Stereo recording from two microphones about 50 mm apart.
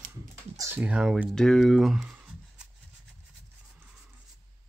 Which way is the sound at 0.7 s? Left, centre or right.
Right.